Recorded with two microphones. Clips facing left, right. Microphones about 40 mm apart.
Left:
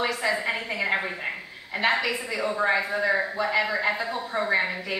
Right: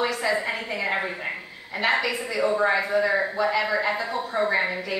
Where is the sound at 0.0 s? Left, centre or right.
Centre.